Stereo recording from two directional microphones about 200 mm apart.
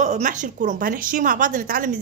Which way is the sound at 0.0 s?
40° right (ahead or behind).